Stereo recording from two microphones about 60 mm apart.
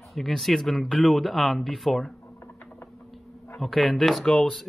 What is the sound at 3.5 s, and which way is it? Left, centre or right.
Speech, centre.